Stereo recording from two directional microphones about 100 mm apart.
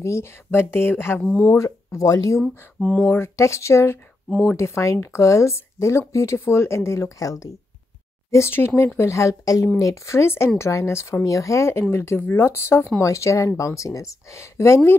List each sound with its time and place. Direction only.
0.0 s speech: 25° left (ahead or behind)
1.6 s speech: 35° left (ahead or behind)
2.8 s speech: 5° left (ahead or behind)
3.1 s speech: 25° left (ahead or behind)